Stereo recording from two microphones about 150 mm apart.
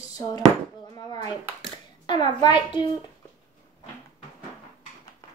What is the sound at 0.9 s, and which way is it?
Clapping, 25° left (ahead or behind).